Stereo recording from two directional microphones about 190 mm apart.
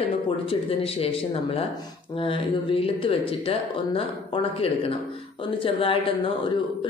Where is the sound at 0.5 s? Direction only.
30° left (ahead or behind).